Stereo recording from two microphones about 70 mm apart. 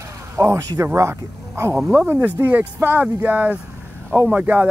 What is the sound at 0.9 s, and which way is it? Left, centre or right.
Speech, right.